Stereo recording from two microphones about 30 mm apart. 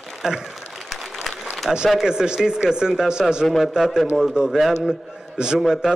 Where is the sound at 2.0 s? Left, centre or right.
Right.